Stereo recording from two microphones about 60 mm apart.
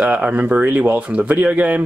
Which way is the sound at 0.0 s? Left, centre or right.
Right.